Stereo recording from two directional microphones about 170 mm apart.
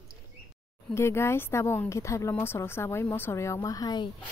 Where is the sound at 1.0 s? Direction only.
15° left (ahead or behind).